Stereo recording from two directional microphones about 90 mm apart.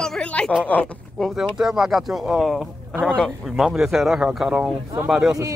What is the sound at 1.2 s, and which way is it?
Speech, 5° right (ahead or behind).